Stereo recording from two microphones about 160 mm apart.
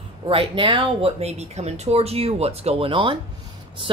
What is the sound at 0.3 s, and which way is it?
Speech, 35° right (ahead or behind).